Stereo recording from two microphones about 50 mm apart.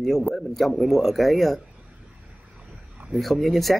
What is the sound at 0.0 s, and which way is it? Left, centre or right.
A man's voice, centre.